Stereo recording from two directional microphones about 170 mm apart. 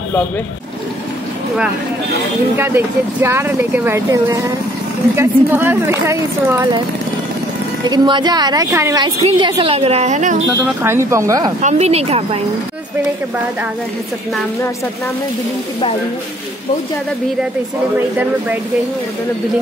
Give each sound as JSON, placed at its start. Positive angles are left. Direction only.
{"t": 2.5, "sound": "speech", "side_deg": -15}
{"t": 7.9, "sound": "a woman's voice", "side_deg": -25}
{"t": 9.0, "sound": "a woman's voice", "side_deg": -30}
{"t": 10.8, "sound": "speech", "side_deg": -15}
{"t": 11.6, "sound": "a woman's voice", "side_deg": -40}
{"t": 17.9, "sound": "speech", "side_deg": -10}